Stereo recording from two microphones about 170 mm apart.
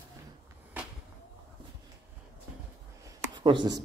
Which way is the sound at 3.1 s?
25° right (ahead or behind).